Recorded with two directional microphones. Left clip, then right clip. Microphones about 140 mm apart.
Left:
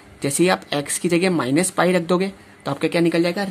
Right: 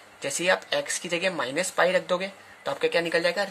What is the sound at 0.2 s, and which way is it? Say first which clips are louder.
A woman's voice: left 5 dB; 35° left (ahead or behind).